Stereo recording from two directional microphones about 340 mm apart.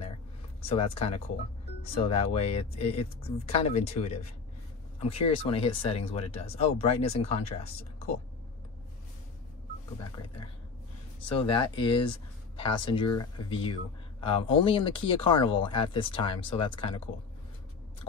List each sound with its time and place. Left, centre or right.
0.7 s speech: centre
5.0 s speech: left
5.5 s speech: centre
11.3 s speech: centre